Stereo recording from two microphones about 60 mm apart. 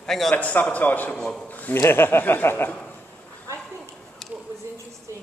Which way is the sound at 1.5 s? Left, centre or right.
Left.